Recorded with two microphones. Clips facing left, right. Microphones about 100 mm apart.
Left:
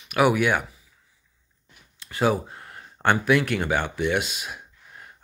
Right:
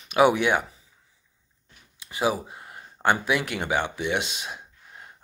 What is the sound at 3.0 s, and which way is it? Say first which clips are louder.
Speech: left 3 dB; 15° right (ahead or behind).